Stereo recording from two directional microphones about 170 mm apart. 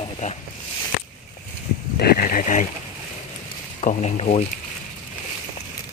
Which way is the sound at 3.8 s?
40° left (ahead or behind).